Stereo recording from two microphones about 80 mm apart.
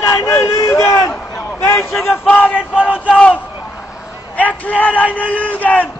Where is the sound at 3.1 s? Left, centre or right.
Centre.